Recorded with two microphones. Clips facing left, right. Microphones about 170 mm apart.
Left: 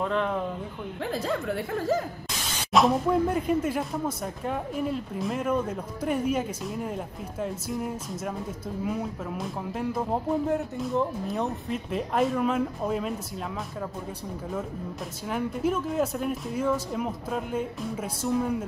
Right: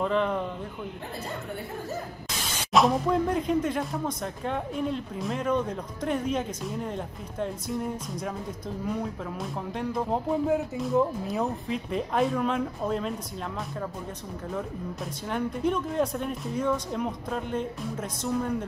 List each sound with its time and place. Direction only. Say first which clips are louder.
0.0 s speech: right 1 dB; centre (ahead or behind)
1.1 s speech: left 10 dB; 90° left
2.7 s speech: left 1 dB; centre (ahead or behind)
15.2 s speech: even; 5° left (ahead or behind)